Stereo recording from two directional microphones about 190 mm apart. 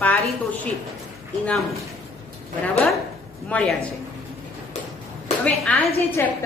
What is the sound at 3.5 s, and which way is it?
Speech, 5° left (ahead or behind).